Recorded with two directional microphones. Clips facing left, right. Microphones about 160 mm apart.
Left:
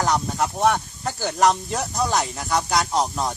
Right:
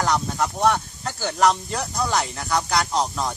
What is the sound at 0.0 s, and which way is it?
Speech, 15° left (ahead or behind).